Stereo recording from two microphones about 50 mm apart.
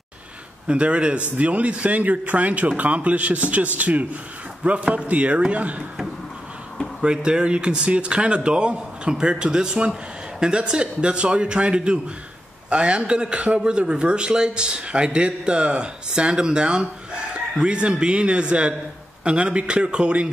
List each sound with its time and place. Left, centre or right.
0.7 s a man's voice: right
7.0 s a man's voice: centre